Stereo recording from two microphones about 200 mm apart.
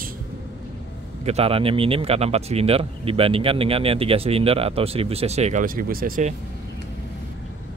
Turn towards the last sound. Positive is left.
turn(degrees=-45)  # may be behind; listen again after turning